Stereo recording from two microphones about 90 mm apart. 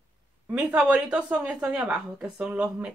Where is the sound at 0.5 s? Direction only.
10° right (ahead or behind).